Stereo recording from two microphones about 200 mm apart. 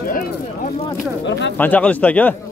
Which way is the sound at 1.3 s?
60° left (ahead or behind).